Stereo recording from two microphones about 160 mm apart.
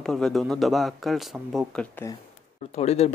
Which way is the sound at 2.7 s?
40° left (ahead or behind).